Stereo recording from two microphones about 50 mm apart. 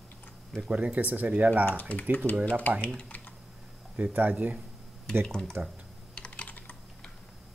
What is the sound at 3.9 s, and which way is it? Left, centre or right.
Speech, right.